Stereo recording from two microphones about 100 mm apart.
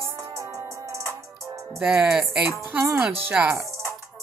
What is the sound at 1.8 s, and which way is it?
Speech, 15° right (ahead or behind).